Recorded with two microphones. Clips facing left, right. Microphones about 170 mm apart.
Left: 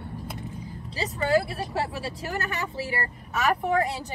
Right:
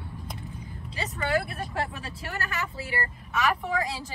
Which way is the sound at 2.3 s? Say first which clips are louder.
Left 1 dB; 20° left (ahead or behind).